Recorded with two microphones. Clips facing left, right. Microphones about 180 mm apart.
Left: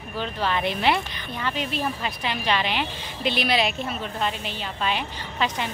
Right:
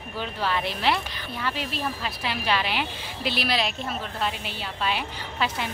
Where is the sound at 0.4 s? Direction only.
5° right (ahead or behind).